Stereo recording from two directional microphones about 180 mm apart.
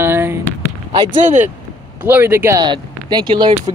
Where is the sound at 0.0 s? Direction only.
15° right (ahead or behind).